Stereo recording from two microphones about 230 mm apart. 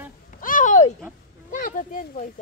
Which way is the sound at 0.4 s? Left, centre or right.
Left.